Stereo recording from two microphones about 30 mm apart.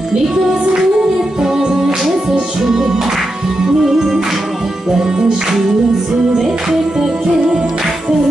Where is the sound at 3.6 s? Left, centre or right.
Centre.